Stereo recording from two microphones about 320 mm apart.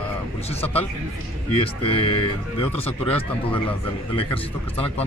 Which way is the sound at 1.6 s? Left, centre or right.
Centre.